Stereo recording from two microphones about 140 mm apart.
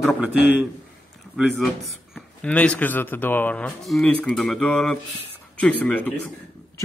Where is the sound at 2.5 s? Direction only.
10° left (ahead or behind).